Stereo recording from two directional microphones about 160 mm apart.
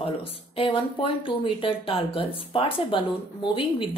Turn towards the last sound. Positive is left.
turn(degrees=35)  # may be behind; listen again after turning